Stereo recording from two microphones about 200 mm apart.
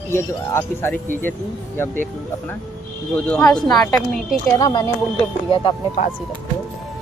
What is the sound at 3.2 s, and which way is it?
Speech, 5° left (ahead or behind).